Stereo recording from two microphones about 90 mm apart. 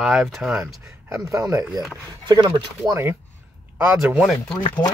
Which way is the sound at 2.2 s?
55° right (ahead or behind).